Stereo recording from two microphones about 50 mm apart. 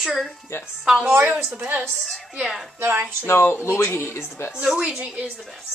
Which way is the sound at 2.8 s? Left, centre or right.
Right.